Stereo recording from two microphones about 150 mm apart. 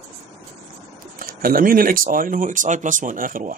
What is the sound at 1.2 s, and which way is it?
Speech, 75° right (ahead or behind).